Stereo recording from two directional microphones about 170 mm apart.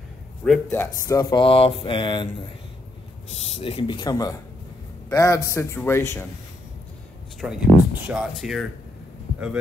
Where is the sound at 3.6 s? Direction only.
35° left (ahead or behind); by 6.3 s 15° left (ahead or behind).